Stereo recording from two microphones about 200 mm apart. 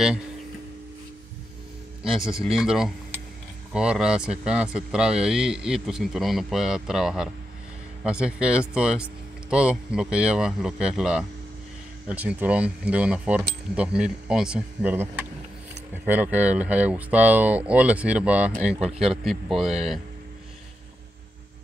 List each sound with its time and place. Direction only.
2.5 s speech: 5° right (ahead or behind)